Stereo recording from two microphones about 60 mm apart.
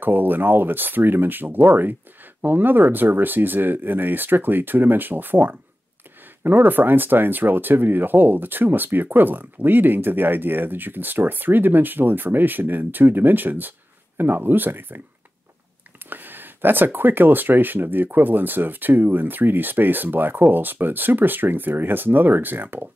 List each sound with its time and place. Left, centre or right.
0.0 s speech: right
16.1 s speech: right